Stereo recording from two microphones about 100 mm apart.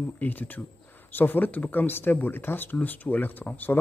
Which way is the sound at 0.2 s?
15° left (ahead or behind).